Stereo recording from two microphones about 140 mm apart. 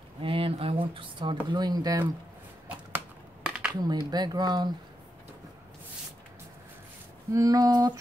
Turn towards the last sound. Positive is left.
turn(degrees=-30)  # may be behind; listen again after turning